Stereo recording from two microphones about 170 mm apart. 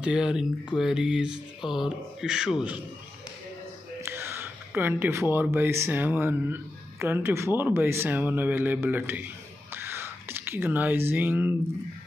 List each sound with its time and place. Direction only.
0.0 s speech: 5° right (ahead or behind)
4.0 s speech: 15° right (ahead or behind)
9.8 s a sound: 15° right (ahead or behind)